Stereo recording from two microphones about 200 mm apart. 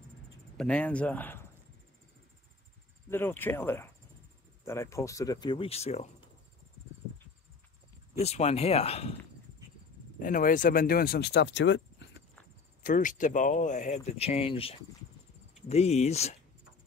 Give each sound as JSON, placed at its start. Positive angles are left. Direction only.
{"t": 0.6, "sound": "speech", "side_deg": 5}
{"t": 3.1, "sound": "speech", "side_deg": 10}
{"t": 8.2, "sound": "speech", "side_deg": 30}
{"t": 10.1, "sound": "speech", "side_deg": 45}
{"t": 12.8, "sound": "speech", "side_deg": 40}